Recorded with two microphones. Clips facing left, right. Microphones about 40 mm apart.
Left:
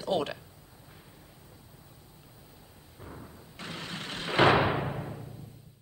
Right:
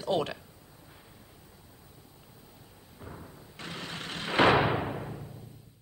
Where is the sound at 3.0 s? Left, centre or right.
Centre.